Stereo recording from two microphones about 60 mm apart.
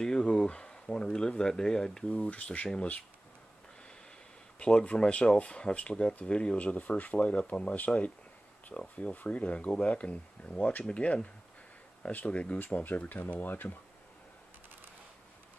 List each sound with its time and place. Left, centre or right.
0.0 s speech: centre
2.2 s speech: left
4.6 s speech: centre; by 13.7 s left